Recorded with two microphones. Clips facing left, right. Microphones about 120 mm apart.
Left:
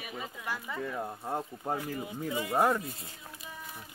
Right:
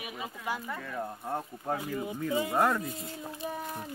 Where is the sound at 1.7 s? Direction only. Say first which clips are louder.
Right 2 dB; 25° right (ahead or behind).